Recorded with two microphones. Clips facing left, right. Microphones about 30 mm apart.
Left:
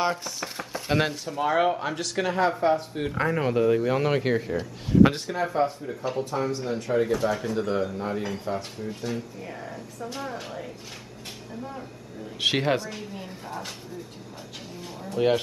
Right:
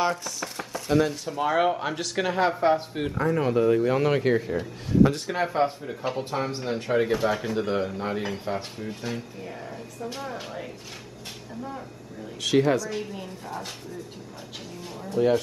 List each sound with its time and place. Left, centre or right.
0.0 s chopping: centre
0.9 s speech: left
1.2 s speech: centre
3.3 s speech: centre
5.3 s speech: right
12.4 s speech: left
15.1 s speech: left